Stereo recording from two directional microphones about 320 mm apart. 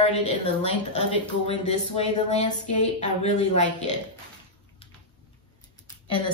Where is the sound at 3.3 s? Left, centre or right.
Left.